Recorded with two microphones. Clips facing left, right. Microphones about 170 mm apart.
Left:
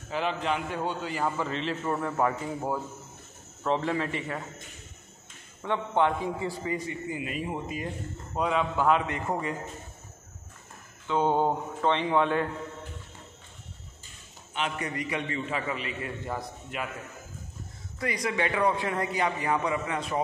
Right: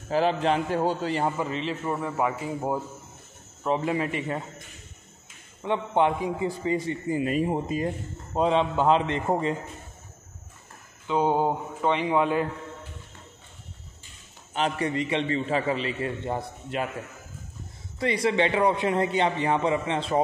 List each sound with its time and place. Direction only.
0.1 s a man's voice: 35° right (ahead or behind)
1.4 s speech: 5° right (ahead or behind)
5.6 s a man's voice: 15° right (ahead or behind)
11.1 s speech: 10° right (ahead or behind)
14.5 s a man's voice: 35° right (ahead or behind)
17.9 s a man's voice: 25° right (ahead or behind)